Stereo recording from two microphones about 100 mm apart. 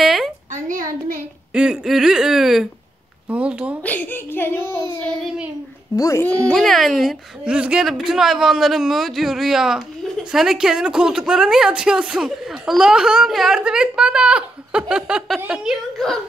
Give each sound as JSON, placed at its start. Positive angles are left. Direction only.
{"t": 0.0, "sound": "a sound", "side_deg": -5}
{"t": 1.5, "sound": "a man's voice", "side_deg": -10}
{"t": 3.8, "sound": "a child's voice", "side_deg": 15}
{"t": 5.9, "sound": "a child's voice", "side_deg": 30}
{"t": 6.2, "sound": "a man's voice", "side_deg": 10}
{"t": 7.5, "sound": "a woman's voice", "side_deg": -10}